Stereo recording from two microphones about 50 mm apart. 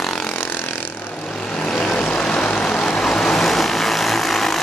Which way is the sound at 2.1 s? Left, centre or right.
Left.